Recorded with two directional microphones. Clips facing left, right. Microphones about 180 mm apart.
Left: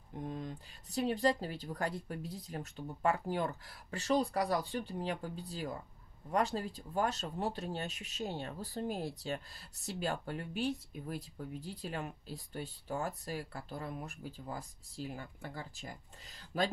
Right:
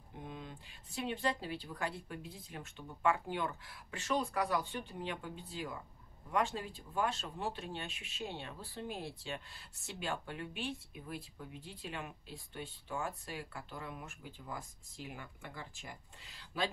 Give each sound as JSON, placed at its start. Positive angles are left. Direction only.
{"t": 0.2, "sound": "speech", "side_deg": 40}